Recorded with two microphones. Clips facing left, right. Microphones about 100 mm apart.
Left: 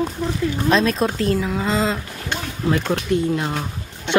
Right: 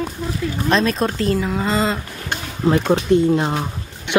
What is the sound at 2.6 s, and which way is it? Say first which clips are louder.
Speech: right 5 dB; 20° right (ahead or behind).